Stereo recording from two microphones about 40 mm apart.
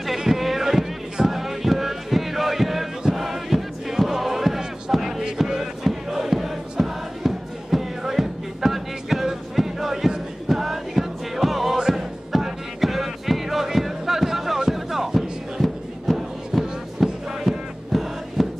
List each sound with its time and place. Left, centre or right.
0.0 s boat: centre
1.1 s a sound: centre
3.2 s music: centre
4.9 s a sound: centre
5.9 s crowd: centre
8.0 s music: centre